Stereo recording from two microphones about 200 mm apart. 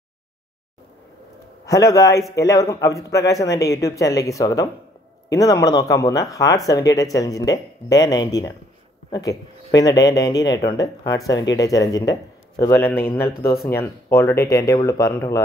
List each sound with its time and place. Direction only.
1.7 s a man's voice: 15° left (ahead or behind)